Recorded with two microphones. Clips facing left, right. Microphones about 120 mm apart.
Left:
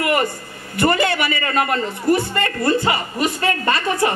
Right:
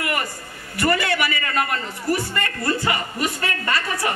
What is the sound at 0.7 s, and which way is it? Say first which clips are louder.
A man's voice: left 3 dB; 25° left (ahead or behind).